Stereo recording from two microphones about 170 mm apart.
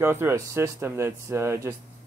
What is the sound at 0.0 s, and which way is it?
Speech, 15° right (ahead or behind).